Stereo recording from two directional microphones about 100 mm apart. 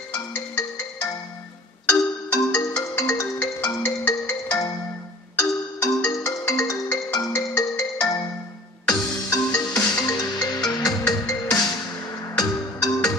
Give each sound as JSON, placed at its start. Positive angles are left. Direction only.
{"t": 2.3, "sound": "music", "side_deg": 35}